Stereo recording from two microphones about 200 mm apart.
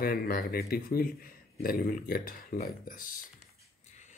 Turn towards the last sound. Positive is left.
turn(degrees=45)  # may be behind; listen again after turning